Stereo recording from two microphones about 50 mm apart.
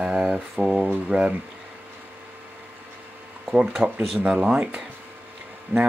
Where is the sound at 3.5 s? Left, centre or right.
Centre.